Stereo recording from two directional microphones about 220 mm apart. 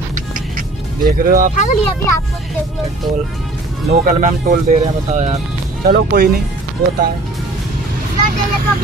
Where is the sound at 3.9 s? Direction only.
35° right (ahead or behind).